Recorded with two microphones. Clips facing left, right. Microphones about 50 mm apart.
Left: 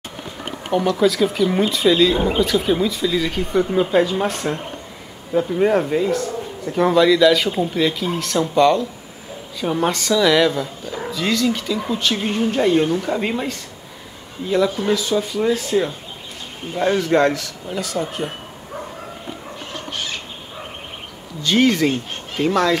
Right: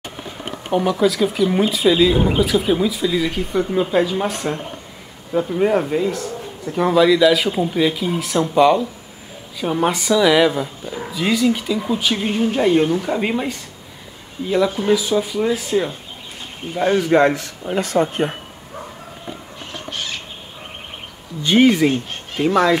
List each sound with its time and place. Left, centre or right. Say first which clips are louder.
0.7 s speech: even; centre
17.4 s speech: right 4 dB; right
19.9 s bird: even; centre
21.4 s speech: right 3 dB; centre